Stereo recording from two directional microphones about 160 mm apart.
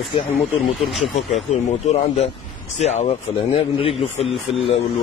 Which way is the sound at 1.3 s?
45° left (ahead or behind).